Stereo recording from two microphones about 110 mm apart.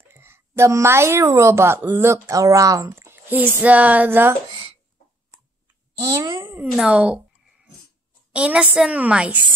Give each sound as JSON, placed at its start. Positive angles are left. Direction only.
{"t": 0.1, "sound": "a woman's voice", "side_deg": -20}
{"t": 6.4, "sound": "a woman's voice", "side_deg": -20}
{"t": 8.3, "sound": "a woman's voice", "side_deg": -10}